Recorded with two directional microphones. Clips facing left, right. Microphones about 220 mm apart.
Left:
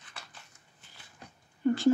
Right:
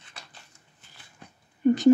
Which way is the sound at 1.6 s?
20° right (ahead or behind).